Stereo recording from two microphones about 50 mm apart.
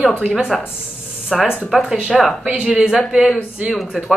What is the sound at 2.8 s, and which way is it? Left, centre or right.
Speech, centre.